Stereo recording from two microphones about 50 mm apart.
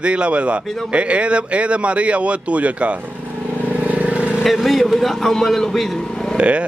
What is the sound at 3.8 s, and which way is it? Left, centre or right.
Vehicle, right.